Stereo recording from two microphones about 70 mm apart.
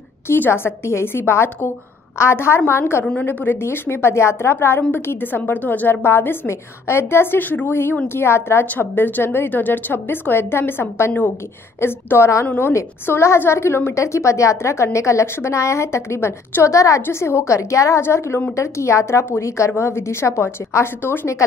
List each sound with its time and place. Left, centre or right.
0.3 s a woman's voice: left